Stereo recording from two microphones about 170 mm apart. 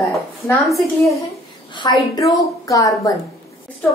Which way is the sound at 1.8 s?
25° left (ahead or behind).